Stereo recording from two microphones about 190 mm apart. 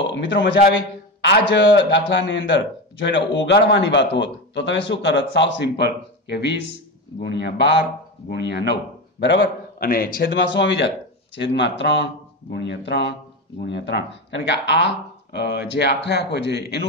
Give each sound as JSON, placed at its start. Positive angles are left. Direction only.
{"t": 0.1, "sound": "a man's voice", "side_deg": 70}
{"t": 9.8, "sound": "a man's voice", "side_deg": 50}